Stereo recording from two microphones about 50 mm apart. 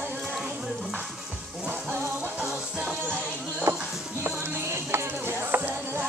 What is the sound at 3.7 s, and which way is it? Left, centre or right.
Music, right.